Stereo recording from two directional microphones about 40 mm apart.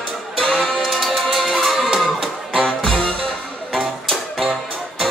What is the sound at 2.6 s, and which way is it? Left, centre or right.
Music, centre.